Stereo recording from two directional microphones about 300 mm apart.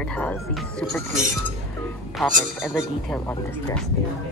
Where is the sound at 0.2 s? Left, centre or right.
Centre.